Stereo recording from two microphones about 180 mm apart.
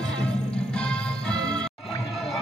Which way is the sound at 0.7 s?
5° left (ahead or behind).